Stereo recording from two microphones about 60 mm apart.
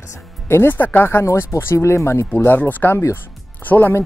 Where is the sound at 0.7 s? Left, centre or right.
Left.